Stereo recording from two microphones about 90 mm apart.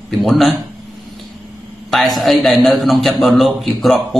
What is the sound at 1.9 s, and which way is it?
A man's voice, centre (ahead or behind).